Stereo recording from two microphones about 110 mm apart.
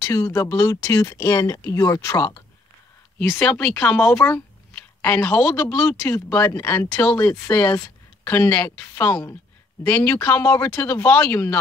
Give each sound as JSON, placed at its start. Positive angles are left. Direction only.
{"t": 0.0, "sound": "speech", "side_deg": 30}
{"t": 3.4, "sound": "a woman's voice", "side_deg": 5}
{"t": 5.9, "sound": "a woman's voice", "side_deg": 20}
{"t": 10.2, "sound": "a woman's voice", "side_deg": 25}